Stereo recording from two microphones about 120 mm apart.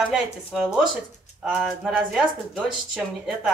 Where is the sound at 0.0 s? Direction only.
5° right (ahead or behind).